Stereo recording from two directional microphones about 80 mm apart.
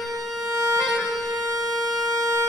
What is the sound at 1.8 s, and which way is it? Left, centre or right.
Wind instrument, right.